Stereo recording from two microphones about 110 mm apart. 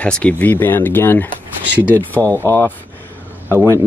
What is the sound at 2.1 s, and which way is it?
Speech, 15° left (ahead or behind).